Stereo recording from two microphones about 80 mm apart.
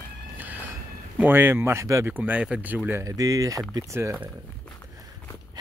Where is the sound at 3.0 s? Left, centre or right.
Right.